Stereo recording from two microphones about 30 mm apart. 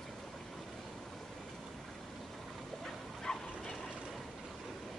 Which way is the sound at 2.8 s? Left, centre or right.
Left.